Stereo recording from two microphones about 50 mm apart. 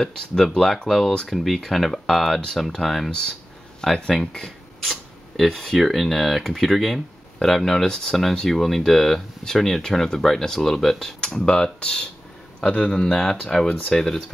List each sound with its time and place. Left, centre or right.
0.0 s speech: centre
3.1 s speech: centre
11.3 s speech: centre